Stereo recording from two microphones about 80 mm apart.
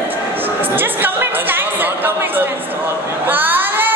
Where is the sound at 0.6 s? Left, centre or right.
Right.